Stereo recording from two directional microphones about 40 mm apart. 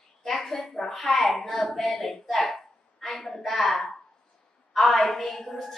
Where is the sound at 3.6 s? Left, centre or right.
Centre.